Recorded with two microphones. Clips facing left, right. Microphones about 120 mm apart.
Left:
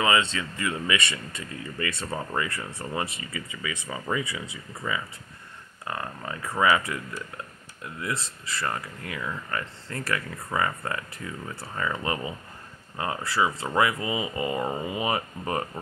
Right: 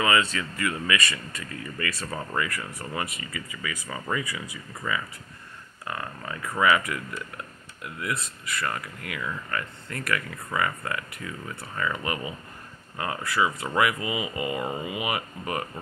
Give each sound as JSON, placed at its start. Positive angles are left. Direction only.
{"t": 0.0, "sound": "speech", "side_deg": 25}